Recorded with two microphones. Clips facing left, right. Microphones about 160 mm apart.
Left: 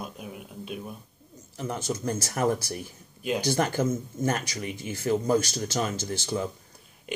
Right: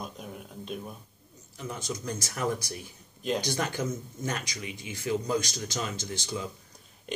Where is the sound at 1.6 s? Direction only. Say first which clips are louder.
Left 5 dB; 45° left (ahead or behind).